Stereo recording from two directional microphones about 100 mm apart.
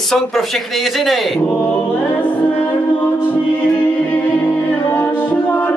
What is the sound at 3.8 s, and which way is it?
A capella, 20° left (ahead or behind).